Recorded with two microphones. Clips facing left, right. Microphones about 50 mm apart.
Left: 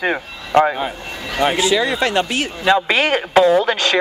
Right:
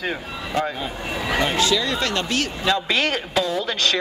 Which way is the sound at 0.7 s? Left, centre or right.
Left.